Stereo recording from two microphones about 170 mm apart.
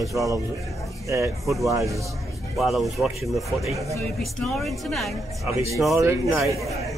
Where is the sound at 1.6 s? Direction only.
20° right (ahead or behind).